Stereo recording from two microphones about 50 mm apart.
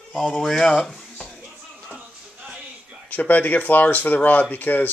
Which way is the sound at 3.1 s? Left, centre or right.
Left.